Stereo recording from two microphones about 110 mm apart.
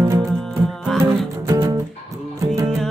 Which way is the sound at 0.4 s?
Centre (ahead or behind).